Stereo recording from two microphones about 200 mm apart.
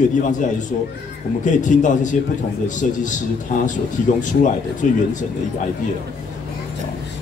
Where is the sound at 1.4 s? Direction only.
40° left (ahead or behind).